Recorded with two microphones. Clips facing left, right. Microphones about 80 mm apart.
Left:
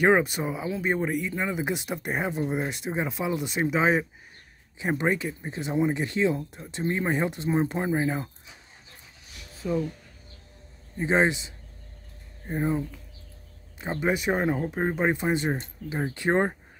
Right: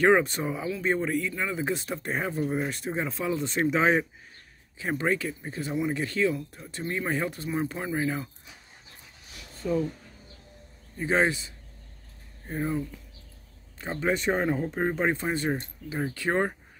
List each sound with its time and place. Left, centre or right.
0.0 s speech: centre
4.7 s speech: left
9.5 s a sound: centre
11.0 s speech: left